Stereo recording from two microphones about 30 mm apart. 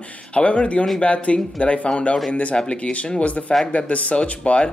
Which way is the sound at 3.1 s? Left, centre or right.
Left.